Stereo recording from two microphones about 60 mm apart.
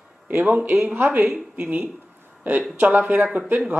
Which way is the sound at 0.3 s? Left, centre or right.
Right.